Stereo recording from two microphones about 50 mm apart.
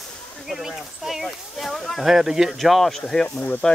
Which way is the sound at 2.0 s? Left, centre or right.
Centre.